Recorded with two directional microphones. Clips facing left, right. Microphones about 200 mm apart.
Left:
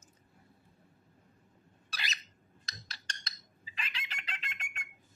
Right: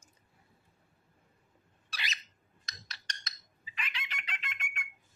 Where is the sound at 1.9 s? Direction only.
40° left (ahead or behind).